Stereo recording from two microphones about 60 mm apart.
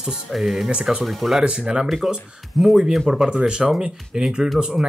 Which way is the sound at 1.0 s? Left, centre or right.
Centre.